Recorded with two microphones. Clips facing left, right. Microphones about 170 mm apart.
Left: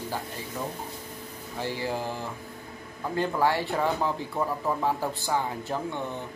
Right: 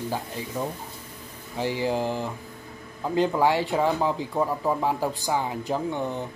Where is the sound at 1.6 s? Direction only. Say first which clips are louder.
Right 5 dB; 15° right (ahead or behind).